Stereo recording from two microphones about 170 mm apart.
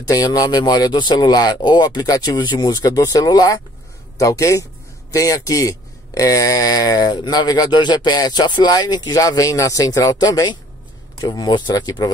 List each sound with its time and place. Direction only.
0.0 s speech: 20° left (ahead or behind)